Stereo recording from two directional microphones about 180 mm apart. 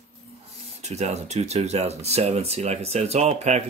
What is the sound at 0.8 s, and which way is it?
Speech, 40° right (ahead or behind).